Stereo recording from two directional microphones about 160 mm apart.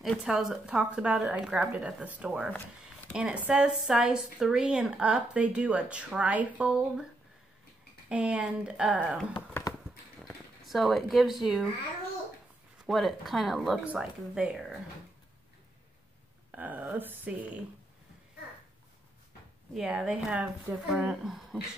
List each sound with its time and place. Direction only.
0.0 s a woman's voice: 5° right (ahead or behind)
8.1 s a woman's voice: 5° right (ahead or behind)
9.5 s a sound: 15° left (ahead or behind)
10.2 s speech: centre (ahead or behind)
12.8 s speech: centre (ahead or behind)
16.5 s a woman's voice: 10° right (ahead or behind)
19.7 s speech: 5° right (ahead or behind)